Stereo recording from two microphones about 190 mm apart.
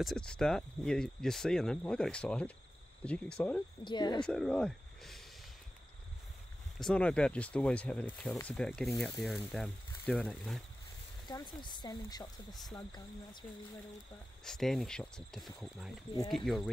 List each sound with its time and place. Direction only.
0.0 s speech: 5° left (ahead or behind)
3.8 s speech: 25° left (ahead or behind)
4.2 s speech: 5° left (ahead or behind)
6.8 s speech: 5° left (ahead or behind)
11.2 s speech: 20° left (ahead or behind)
14.4 s speech: centre (ahead or behind)